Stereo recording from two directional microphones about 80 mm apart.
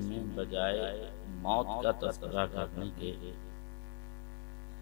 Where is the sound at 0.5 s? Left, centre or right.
Left.